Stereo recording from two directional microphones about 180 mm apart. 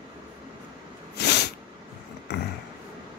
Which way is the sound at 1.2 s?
65° left (ahead or behind).